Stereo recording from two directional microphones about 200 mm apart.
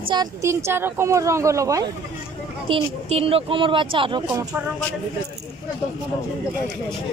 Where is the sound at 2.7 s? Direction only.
30° right (ahead or behind).